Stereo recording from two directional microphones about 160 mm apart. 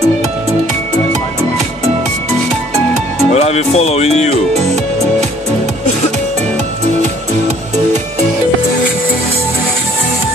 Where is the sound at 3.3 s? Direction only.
40° left (ahead or behind).